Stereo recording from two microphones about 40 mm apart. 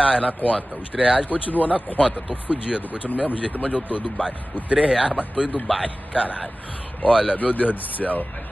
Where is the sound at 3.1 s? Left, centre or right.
Left.